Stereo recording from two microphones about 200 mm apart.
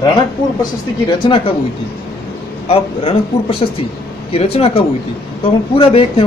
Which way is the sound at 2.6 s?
25° left (ahead or behind).